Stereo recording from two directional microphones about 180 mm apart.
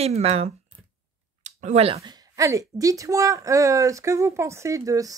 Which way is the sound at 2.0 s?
20° right (ahead or behind).